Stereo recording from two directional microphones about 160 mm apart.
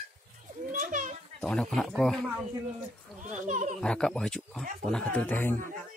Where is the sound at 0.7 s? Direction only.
55° right (ahead or behind).